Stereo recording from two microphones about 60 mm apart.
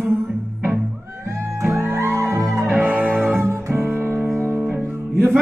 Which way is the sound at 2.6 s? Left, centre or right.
Right.